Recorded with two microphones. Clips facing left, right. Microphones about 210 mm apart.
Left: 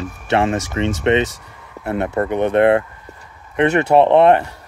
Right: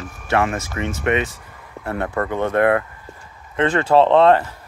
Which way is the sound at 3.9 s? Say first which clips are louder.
Left 1 dB; 15° left (ahead or behind).